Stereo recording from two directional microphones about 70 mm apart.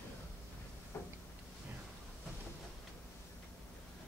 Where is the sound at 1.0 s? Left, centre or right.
Left.